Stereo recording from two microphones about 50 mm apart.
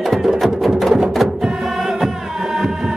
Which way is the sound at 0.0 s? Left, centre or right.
Centre.